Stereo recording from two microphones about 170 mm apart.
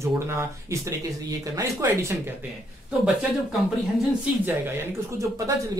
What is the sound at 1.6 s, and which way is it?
Speech, 20° right (ahead or behind).